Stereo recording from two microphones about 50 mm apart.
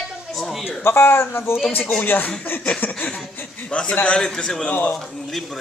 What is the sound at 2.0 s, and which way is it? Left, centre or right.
Speech, left.